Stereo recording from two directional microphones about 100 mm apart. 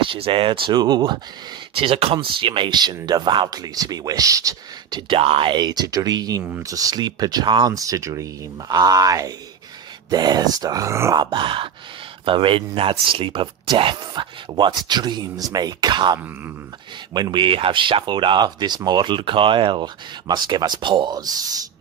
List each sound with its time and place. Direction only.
0.0 s speech: 60° right (ahead or behind)
1.8 s speech: 80° right
2.1 s speech: 60° right (ahead or behind)
3.4 s speech: 40° right (ahead or behind)
5.0 s speech: 65° right (ahead or behind); by 7.7 s 45° right (ahead or behind)
7.7 s speech: 35° right (ahead or behind)
11.1 s speech: 55° right (ahead or behind); by 21.5 s 40° right (ahead or behind)